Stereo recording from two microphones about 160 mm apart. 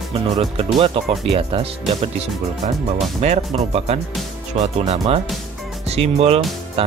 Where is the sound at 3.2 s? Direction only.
45° right (ahead or behind).